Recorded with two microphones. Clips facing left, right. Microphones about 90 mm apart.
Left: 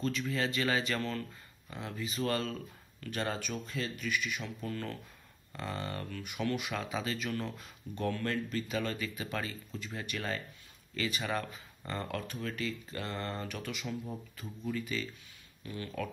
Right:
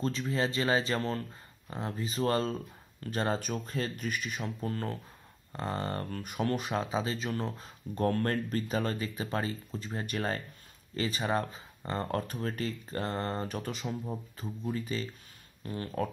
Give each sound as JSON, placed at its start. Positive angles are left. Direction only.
{"t": 0.0, "sound": "speech", "side_deg": -35}